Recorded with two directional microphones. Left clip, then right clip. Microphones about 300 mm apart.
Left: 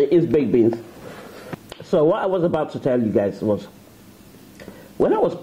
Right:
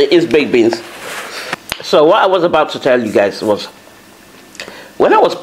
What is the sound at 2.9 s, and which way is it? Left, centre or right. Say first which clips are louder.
Speech: right 7 dB; centre.